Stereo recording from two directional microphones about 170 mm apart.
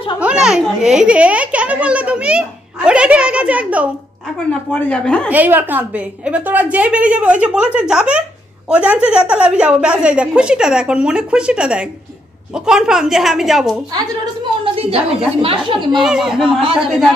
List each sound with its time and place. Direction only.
0.2 s a child's voice: 5° right (ahead or behind)
4.6 s a woman's voice: 10° left (ahead or behind)
5.3 s a woman's voice: 10° right (ahead or behind)
13.9 s a woman's voice: 30° right (ahead or behind)
16.0 s a woman's voice: 5° right (ahead or behind)